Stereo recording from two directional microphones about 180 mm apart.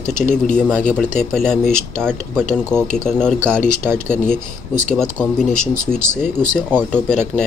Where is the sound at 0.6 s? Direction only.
5° left (ahead or behind).